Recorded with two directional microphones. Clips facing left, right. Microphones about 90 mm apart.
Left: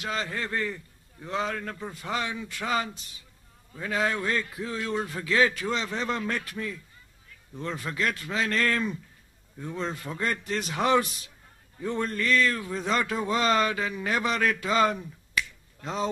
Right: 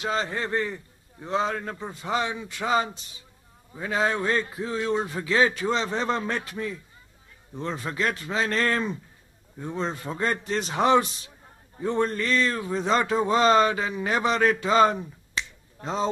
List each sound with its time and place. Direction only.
0.0 s speech: 25° right (ahead or behind)